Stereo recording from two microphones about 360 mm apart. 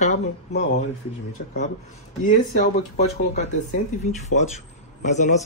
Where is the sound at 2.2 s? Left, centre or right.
Centre.